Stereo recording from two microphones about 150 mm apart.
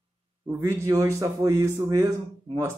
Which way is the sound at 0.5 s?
20° right (ahead or behind).